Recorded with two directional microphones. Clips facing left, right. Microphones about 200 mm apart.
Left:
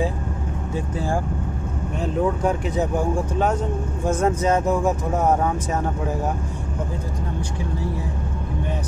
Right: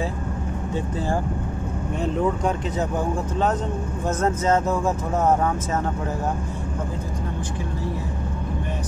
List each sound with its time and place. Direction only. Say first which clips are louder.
0.7 s speech: even; 10° left (ahead or behind)